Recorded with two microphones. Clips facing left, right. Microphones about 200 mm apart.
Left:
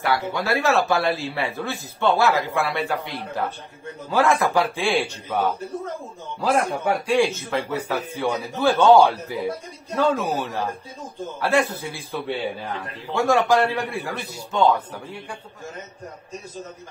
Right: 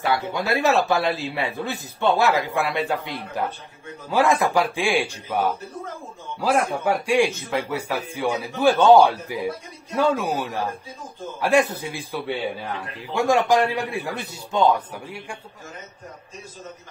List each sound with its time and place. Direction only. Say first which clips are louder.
0.0 s a man's voice: even; 20° right (ahead or behind)